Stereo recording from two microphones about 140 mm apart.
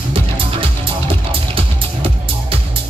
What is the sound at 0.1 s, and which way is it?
Music, 40° right (ahead or behind).